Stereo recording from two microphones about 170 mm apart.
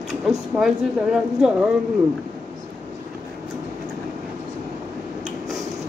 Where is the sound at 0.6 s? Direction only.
Centre (ahead or behind).